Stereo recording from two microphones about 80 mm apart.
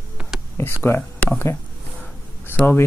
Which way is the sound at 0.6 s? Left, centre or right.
Left.